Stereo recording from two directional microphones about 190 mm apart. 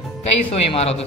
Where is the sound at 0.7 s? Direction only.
35° left (ahead or behind).